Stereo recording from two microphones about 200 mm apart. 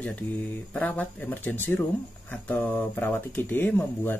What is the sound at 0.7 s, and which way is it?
Speech, 5° left (ahead or behind).